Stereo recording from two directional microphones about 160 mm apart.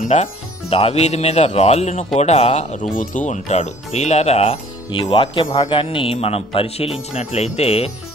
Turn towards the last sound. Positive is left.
turn(degrees=40)  # may be behind; listen again after turning